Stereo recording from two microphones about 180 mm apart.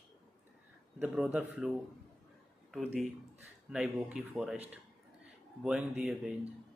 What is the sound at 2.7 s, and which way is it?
Speech, 5° left (ahead or behind).